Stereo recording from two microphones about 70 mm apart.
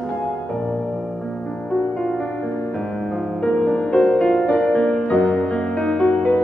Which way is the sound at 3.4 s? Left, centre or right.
Centre.